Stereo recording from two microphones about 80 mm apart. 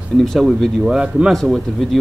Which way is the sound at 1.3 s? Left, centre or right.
Centre.